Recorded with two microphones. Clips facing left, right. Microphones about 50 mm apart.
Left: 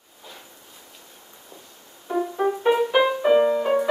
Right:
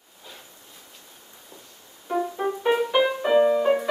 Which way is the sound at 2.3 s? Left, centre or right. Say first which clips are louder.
Left 4 dB; centre.